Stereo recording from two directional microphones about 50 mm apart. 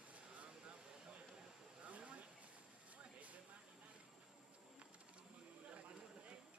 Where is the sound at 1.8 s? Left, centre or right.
Right.